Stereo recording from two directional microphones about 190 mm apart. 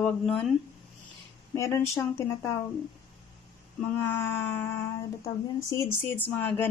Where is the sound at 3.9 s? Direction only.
10° left (ahead or behind).